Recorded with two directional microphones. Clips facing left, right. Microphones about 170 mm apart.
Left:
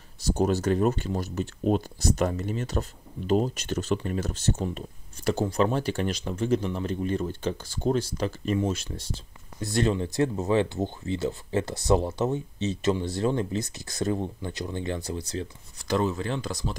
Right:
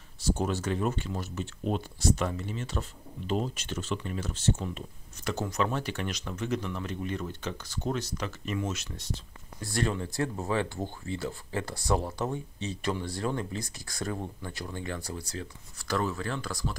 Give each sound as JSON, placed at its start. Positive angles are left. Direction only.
{"t": 0.2, "sound": "speech", "side_deg": 40}